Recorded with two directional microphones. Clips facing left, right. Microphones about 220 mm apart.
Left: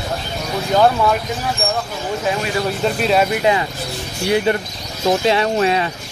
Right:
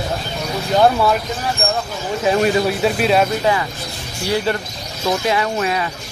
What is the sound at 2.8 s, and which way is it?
Speech, centre (ahead or behind).